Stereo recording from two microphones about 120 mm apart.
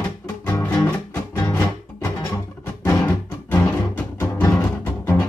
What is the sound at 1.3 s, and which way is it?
Music, 25° left (ahead or behind).